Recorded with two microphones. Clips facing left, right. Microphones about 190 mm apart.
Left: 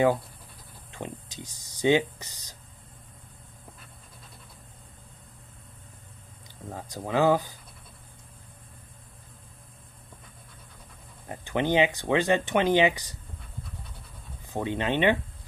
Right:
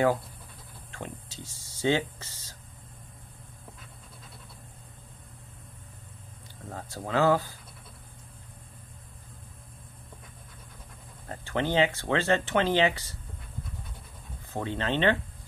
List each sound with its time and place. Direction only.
0.9 s speech: 15° left (ahead or behind)
6.7 s speech: 15° left (ahead or behind)
11.2 s speech: 15° left (ahead or behind)
14.5 s speech: 15° left (ahead or behind)